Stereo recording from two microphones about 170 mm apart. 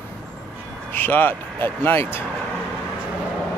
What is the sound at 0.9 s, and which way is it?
Speech, 10° left (ahead or behind).